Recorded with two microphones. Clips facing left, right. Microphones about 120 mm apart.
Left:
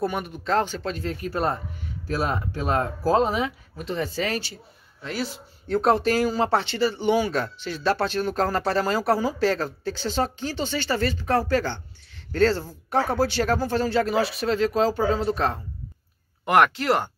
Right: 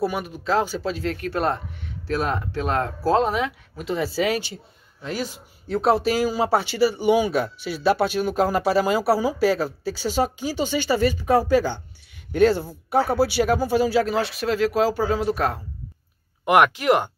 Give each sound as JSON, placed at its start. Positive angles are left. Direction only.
{"t": 0.0, "sound": "speech", "side_deg": -5}
{"t": 1.8, "sound": "a sound", "side_deg": -60}
{"t": 2.8, "sound": "speech", "side_deg": 10}
{"t": 3.8, "sound": "speech", "side_deg": -5}
{"t": 5.7, "sound": "speech", "side_deg": 0}